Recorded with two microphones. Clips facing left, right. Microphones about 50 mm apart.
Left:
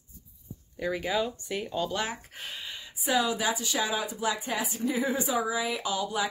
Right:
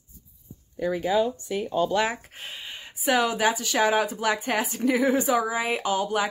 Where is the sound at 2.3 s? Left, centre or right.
Right.